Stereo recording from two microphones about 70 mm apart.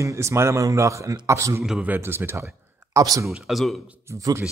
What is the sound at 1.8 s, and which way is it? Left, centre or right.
Speech, right.